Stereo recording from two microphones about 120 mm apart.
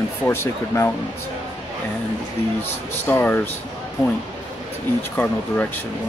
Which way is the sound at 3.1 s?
15° left (ahead or behind).